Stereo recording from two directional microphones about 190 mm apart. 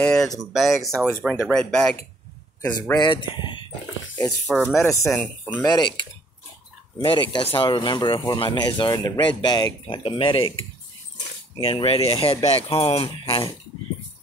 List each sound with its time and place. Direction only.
0.0 s speech: 5° left (ahead or behind)
3.0 s speech: 25° left (ahead or behind)
4.5 s speech: 5° right (ahead or behind)
5.8 s speech: 25° left (ahead or behind)
7.1 s speech: 25° left (ahead or behind)
11.6 s speech: 30° left (ahead or behind)